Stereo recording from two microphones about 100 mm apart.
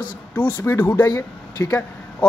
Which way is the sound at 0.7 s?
20° left (ahead or behind).